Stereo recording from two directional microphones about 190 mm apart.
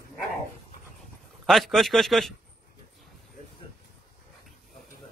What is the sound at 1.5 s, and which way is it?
Speech, centre (ahead or behind).